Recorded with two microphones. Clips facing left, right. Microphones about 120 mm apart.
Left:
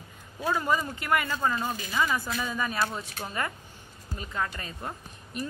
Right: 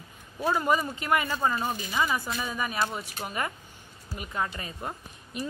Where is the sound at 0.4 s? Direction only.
15° right (ahead or behind).